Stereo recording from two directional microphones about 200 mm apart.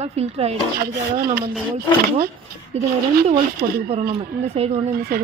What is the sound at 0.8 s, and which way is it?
Speech, 50° right (ahead or behind).